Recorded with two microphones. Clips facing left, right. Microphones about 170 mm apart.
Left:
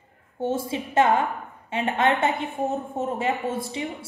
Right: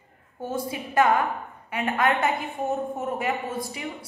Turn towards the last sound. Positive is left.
turn(degrees=25)  # may be behind; listen again after turning